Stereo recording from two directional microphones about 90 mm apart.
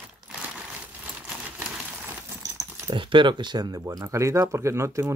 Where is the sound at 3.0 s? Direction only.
65° right (ahead or behind).